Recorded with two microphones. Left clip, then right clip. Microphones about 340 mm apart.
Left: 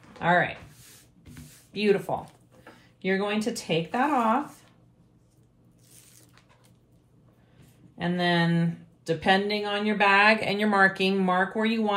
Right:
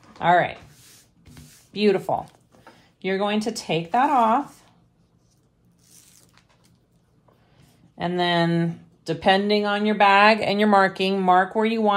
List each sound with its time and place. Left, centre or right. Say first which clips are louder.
0.2 s speech: right 5 dB; right
1.7 s speech: right 4 dB; right
5.9 s a sound: right 3 dB; centre
8.0 s speech: right 4 dB; right